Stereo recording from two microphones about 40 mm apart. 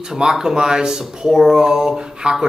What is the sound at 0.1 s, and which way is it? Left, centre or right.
Speech, centre.